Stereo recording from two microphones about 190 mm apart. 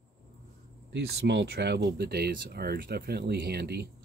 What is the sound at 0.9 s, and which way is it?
Speech, 65° right (ahead or behind).